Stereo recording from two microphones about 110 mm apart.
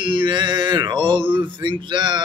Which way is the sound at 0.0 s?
50° right (ahead or behind).